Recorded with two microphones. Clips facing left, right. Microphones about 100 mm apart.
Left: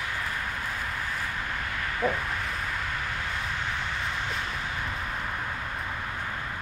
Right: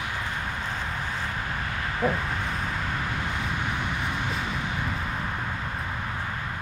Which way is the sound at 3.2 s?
15° right (ahead or behind).